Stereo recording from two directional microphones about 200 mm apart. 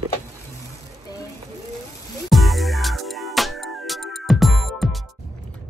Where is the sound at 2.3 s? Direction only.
Centre (ahead or behind).